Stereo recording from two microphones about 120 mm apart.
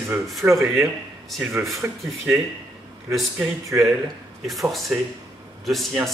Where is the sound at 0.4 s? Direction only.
20° right (ahead or behind).